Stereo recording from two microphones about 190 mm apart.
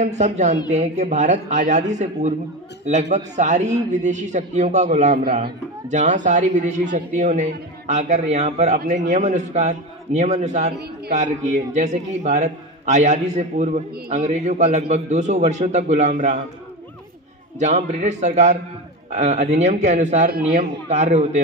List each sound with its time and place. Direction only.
0.0 s a man's voice: 35° right (ahead or behind)
5.2 s speech: 55° right (ahead or behind)
5.9 s a man's voice: 40° right (ahead or behind)
17.6 s a man's voice: 40° right (ahead or behind)